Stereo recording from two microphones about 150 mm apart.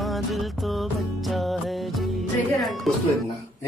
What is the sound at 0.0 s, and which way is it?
Music, centre (ahead or behind).